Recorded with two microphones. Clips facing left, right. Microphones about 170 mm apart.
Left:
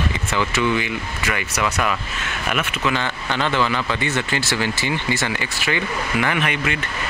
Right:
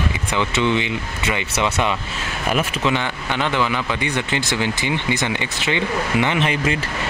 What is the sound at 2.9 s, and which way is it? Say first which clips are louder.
Speech: right 1 dB; 15° right (ahead or behind).